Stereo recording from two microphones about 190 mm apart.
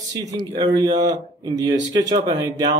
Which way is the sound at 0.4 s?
20° right (ahead or behind).